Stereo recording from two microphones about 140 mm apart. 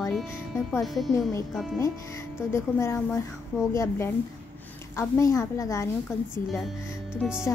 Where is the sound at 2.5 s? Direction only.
20° left (ahead or behind).